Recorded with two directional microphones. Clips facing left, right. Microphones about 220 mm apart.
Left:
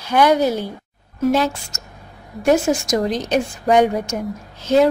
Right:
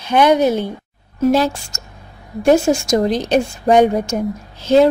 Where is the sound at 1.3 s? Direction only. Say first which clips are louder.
Right 2 dB; 35° right (ahead or behind).